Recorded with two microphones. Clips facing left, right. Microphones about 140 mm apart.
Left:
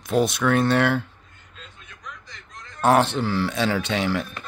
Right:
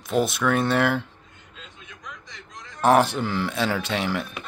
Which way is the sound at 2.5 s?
10° right (ahead or behind).